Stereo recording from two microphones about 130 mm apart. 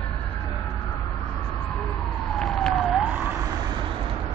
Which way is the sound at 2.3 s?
5° left (ahead or behind).